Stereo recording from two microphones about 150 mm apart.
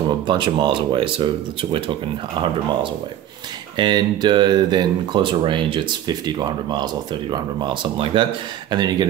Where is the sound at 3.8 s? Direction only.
30° right (ahead or behind).